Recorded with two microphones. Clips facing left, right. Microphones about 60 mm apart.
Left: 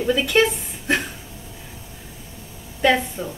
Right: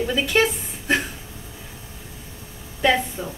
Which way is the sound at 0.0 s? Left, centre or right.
Centre.